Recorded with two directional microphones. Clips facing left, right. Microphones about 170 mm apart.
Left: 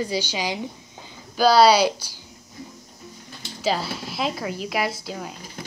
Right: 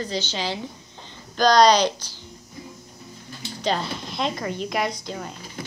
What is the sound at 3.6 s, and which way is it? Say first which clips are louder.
Speech: left 1 dB; 5° left (ahead or behind).